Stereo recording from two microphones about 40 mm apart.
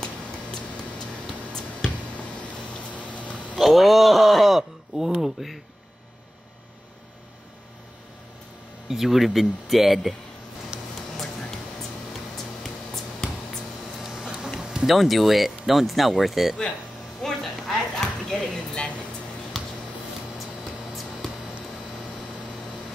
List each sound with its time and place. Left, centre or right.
3.0 s a sound: left
3.5 s speech: centre
8.8 s speech: centre
12.6 s music: centre
14.0 s printer: centre
14.6 s music: centre
14.9 s a woman's voice: centre
18.0 s a sound: centre
20.9 s music: centre